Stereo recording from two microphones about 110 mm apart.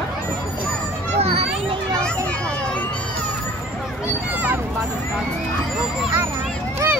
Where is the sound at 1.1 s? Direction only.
70° right (ahead or behind).